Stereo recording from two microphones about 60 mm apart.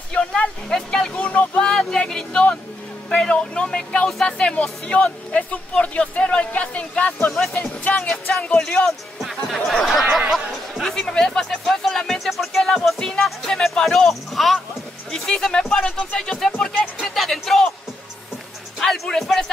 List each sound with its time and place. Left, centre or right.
0.1 s vehicle: centre
1.2 s a sound: left
1.6 s a sound: centre
3.2 s speech: centre
7.2 s speech: centre
7.8 s speech: left
8.5 s speech: centre
10.3 s chatter: centre
12.0 s music: centre
13.2 s a sound: centre
18.8 s music: centre